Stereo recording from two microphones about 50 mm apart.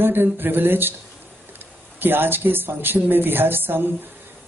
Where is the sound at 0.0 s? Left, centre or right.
Right.